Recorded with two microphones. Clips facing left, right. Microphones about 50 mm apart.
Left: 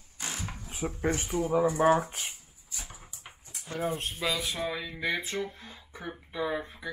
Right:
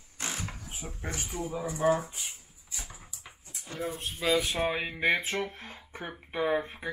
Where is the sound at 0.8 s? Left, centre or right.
Left.